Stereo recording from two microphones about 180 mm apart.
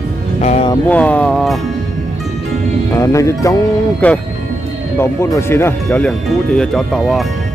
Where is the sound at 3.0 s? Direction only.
15° left (ahead or behind); by 7.2 s centre (ahead or behind).